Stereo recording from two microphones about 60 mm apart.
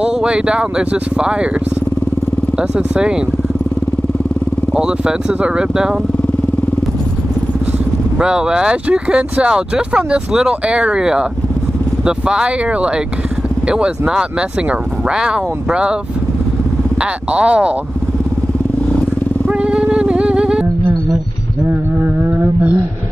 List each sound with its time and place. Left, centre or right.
0.0 s speech: centre
2.7 s speech: centre
4.7 s speech: centre
8.2 s speech: centre
17.0 s speech: centre
19.4 s music: centre
21.6 s a sound: right